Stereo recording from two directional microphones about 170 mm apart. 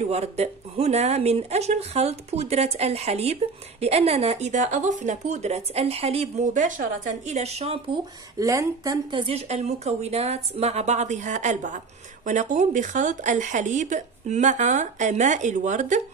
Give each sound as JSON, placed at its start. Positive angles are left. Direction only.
{"t": 0.0, "sound": "speech", "side_deg": -40}
{"t": 8.4, "sound": "speech", "side_deg": -20}